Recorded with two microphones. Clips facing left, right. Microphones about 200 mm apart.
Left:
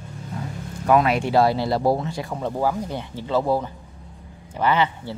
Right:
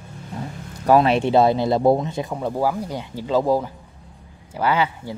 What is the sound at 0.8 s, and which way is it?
Speech, 30° right (ahead or behind).